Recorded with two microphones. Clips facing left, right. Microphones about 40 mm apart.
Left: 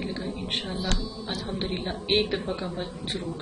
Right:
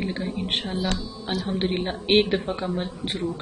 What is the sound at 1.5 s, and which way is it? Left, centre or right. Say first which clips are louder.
Speech: right 6 dB; right.